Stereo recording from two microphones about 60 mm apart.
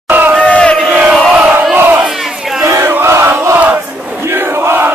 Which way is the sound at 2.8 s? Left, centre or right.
Right.